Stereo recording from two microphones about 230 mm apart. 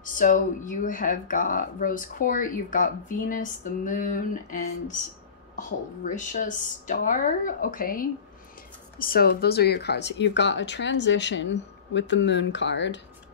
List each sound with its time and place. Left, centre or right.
0.0 s speech: left